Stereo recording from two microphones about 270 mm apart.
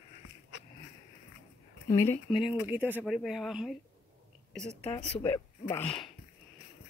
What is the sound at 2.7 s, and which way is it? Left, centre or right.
Speech, centre.